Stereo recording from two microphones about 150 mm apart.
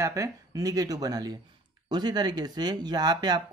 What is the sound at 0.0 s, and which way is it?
Speech, 20° right (ahead or behind).